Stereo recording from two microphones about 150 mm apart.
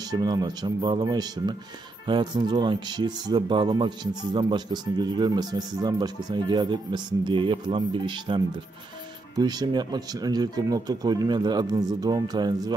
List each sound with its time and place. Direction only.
0.1 s speech: 25° right (ahead or behind)